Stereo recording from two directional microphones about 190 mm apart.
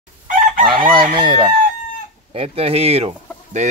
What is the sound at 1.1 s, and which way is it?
Speech, 25° right (ahead or behind).